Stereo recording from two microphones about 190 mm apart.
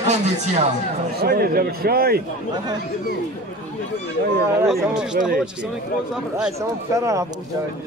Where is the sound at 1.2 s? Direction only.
55° right (ahead or behind).